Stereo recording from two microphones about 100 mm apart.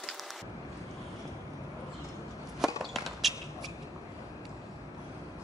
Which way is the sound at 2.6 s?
Centre (ahead or behind).